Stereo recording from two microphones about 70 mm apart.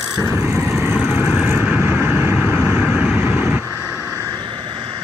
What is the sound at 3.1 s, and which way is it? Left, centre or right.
Vehicle, right.